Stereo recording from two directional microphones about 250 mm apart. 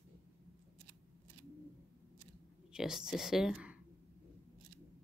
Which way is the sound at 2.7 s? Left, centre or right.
Centre.